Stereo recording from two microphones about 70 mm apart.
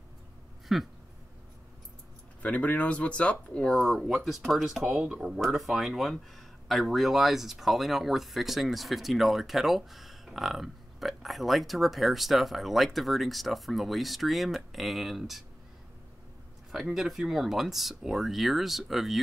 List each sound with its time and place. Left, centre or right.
0.7 s speech: centre
2.4 s speech: left
3.7 s speech: centre
16.9 s speech: centre